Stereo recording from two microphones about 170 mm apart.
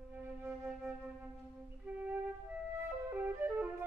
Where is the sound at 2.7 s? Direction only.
10° right (ahead or behind).